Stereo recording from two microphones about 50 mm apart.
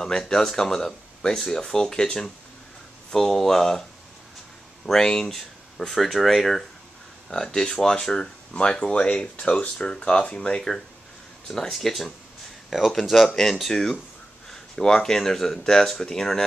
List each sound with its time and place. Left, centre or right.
0.0 s speech: centre
4.8 s speech: centre
11.4 s speech: centre
12.7 s speech: centre
13.3 s speech: centre